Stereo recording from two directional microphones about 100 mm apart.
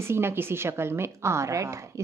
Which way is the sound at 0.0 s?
25° right (ahead or behind).